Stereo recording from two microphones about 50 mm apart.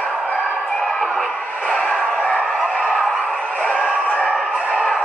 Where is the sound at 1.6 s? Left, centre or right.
Left.